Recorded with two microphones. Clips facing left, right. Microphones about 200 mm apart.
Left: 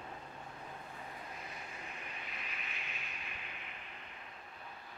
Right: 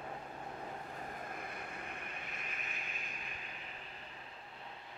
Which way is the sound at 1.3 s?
55° right (ahead or behind).